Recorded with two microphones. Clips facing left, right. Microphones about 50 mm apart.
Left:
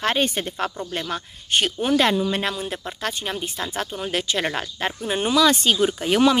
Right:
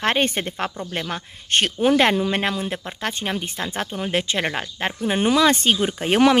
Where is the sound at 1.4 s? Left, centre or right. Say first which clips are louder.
Right 1 dB; right.